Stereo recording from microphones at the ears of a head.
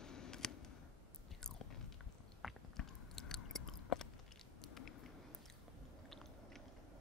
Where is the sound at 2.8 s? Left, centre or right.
Left.